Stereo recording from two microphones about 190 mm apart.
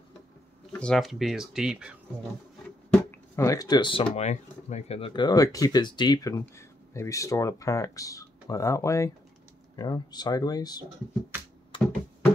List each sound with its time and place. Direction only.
0.7 s speech: 5° left (ahead or behind)
2.9 s a sound: 15° left (ahead or behind)
4.1 s speech: 35° left (ahead or behind); by 10.9 s 20° left (ahead or behind)
11.7 s computer keyboard: 25° left (ahead or behind)